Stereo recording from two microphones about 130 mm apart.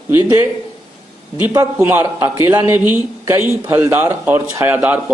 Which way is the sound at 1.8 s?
15° right (ahead or behind).